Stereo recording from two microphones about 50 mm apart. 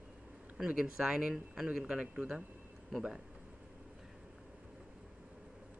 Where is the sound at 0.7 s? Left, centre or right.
Centre.